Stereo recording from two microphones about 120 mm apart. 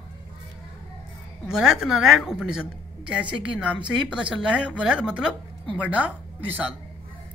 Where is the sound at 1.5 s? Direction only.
5° right (ahead or behind).